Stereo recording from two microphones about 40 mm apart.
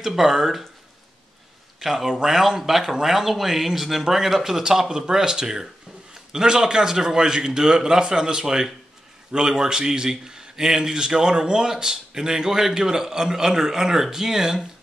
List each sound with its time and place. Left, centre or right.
0.0 s a man's voice: centre
1.8 s a man's voice: centre